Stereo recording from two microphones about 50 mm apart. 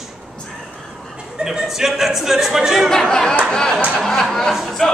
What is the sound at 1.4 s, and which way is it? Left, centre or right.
Speech, centre.